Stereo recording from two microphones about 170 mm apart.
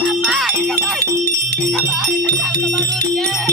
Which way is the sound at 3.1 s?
Centre (ahead or behind).